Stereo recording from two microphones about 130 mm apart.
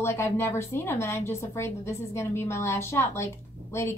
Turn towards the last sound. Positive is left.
turn(degrees=20)  # may be behind; listen again after turning